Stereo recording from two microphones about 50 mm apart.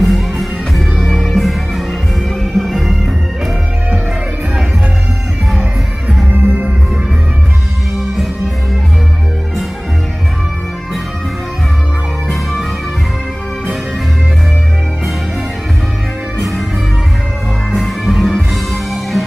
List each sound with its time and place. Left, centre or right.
0.0 s music: centre
6.3 s music: right
12.3 s music: centre
16.3 s music: centre
17.6 s music: centre